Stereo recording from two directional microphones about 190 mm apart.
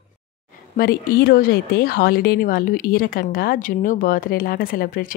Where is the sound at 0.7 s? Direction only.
55° left (ahead or behind).